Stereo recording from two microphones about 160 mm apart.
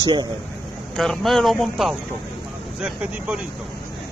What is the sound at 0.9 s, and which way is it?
Speech, centre (ahead or behind).